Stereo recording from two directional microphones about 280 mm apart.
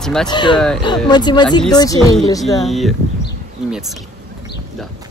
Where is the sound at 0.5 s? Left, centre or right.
Centre.